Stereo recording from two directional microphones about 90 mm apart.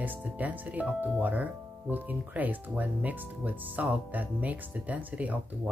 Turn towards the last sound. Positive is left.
turn(degrees=-15)  # may be behind; listen again after turning